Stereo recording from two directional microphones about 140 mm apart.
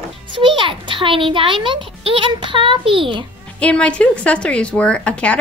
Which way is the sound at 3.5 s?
10° left (ahead or behind).